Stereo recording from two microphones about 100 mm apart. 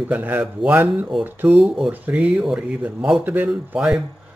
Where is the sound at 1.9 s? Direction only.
15° right (ahead or behind).